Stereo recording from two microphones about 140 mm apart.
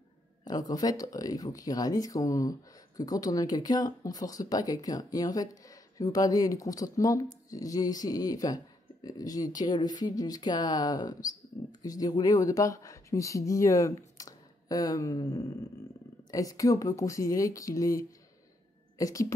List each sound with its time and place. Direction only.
0.5 s speech: 25° left (ahead or behind)